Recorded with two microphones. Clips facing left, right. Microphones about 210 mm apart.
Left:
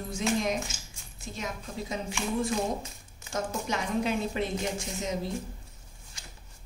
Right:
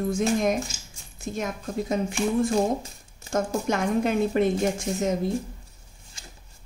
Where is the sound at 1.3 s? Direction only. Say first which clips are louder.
Right 7 dB; 50° right (ahead or behind).